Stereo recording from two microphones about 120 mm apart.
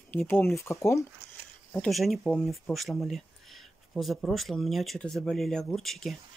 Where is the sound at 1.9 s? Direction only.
Centre (ahead or behind).